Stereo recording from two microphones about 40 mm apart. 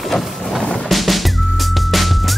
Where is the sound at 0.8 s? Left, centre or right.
Centre.